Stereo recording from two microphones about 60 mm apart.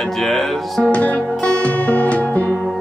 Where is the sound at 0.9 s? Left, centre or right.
Left.